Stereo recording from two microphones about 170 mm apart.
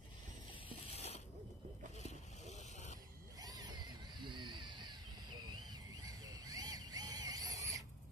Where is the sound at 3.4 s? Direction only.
20° right (ahead or behind).